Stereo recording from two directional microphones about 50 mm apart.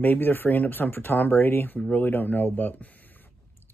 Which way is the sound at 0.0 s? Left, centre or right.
Left.